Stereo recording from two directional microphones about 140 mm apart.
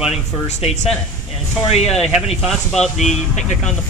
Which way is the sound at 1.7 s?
50° left (ahead or behind).